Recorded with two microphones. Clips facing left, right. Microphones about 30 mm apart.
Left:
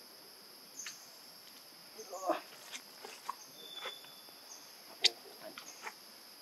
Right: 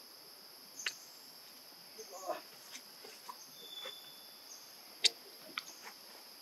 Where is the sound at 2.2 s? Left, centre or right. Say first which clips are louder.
Left 7 dB; left.